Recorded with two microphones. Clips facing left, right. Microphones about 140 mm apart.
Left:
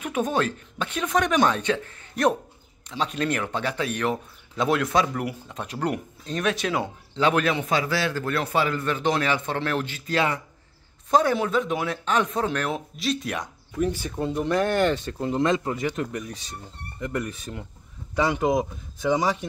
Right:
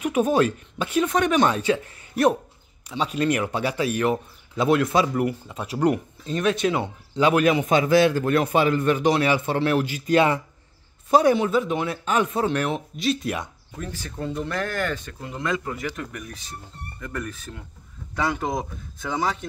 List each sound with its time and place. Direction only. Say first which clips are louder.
0.0 s speech: right 5 dB; 10° right (ahead or behind)
7.2 s a man's voice: right 3 dB; 10° right (ahead or behind)
11.1 s speech: right 3 dB; 10° right (ahead or behind)
13.7 s a man's voice: left 7 dB; 20° left (ahead or behind)
18.5 s speech: left 5 dB; 10° left (ahead or behind)